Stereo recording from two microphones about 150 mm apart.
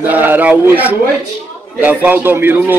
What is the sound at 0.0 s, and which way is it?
A man's voice, 10° right (ahead or behind).